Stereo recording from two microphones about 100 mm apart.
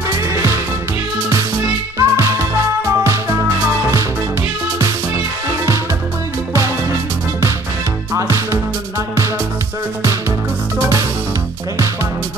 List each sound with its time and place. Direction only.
2.0 s music: 30° right (ahead or behind)
8.1 s music: 30° right (ahead or behind)
10.8 s music: 30° right (ahead or behind)